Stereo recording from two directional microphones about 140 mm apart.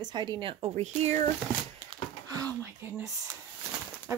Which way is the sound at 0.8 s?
55° right (ahead or behind).